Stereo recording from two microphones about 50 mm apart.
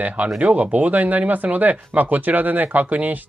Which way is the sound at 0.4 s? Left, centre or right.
Right.